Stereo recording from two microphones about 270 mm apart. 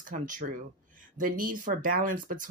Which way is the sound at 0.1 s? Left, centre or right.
Right.